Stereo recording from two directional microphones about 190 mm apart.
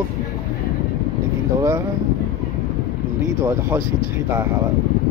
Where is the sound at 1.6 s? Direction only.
15° right (ahead or behind).